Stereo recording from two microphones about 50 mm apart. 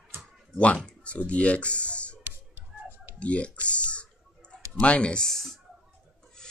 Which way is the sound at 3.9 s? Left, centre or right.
Left.